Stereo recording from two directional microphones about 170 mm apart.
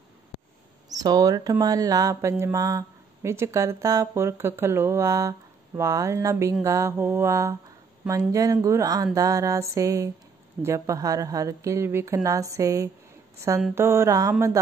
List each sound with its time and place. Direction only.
0.8 s speech: 20° right (ahead or behind)
5.8 s mantra: 15° right (ahead or behind)
8.1 s speech: 20° right (ahead or behind)
13.4 s mantra: 15° right (ahead or behind)